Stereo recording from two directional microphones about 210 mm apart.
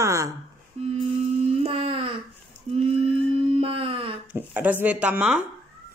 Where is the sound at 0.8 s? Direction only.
30° right (ahead or behind).